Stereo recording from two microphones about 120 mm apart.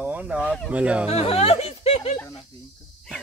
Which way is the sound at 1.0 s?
60° left (ahead or behind).